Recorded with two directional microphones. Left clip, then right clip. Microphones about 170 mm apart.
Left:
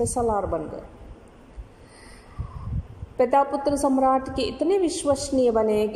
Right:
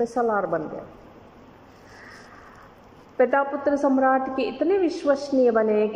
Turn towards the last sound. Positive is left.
turn(degrees=25)  # may be behind; listen again after turning